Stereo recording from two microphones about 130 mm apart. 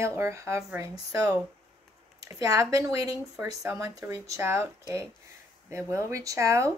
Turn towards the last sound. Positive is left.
turn(degrees=-25)  # may be behind; listen again after turning